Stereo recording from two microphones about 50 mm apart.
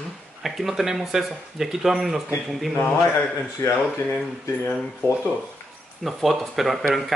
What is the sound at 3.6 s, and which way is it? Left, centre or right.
Speech, left.